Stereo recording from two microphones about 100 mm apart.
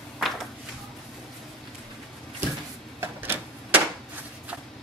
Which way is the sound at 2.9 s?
20° right (ahead or behind).